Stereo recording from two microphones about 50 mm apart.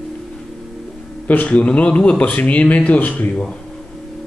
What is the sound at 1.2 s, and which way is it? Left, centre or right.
Speech, left.